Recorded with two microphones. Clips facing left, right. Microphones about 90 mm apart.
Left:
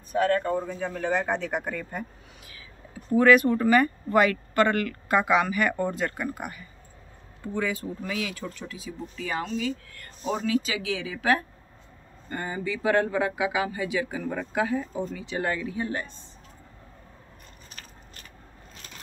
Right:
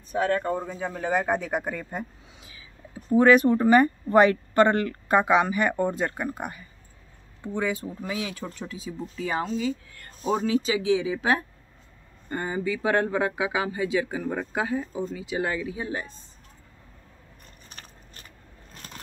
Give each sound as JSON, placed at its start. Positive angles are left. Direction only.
{"t": 0.2, "sound": "a man's voice", "side_deg": -15}
{"t": 14.2, "sound": "speech", "side_deg": -5}
{"t": 14.5, "sound": "speech", "side_deg": -20}